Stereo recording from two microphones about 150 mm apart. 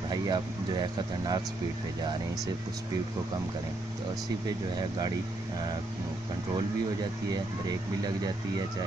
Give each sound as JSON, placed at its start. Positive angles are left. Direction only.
{"t": 0.1, "sound": "speech", "side_deg": -25}
{"t": 4.5, "sound": "speech", "side_deg": -30}
{"t": 6.5, "sound": "speech", "side_deg": -25}